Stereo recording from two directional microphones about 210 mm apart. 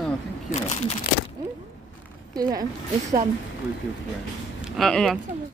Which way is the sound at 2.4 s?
15° right (ahead or behind).